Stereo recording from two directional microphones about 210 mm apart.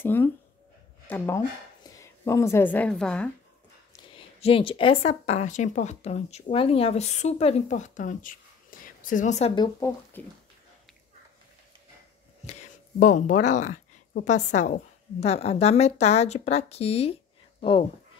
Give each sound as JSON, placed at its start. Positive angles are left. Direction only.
{"t": 0.0, "sound": "a woman's voice", "side_deg": 10}
{"t": 4.4, "sound": "speech", "side_deg": 25}
{"t": 9.6, "sound": "speech", "side_deg": 15}
{"t": 12.4, "sound": "speech", "side_deg": 35}